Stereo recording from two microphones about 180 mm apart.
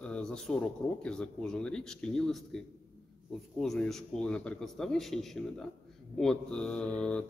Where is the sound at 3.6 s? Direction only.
Centre (ahead or behind).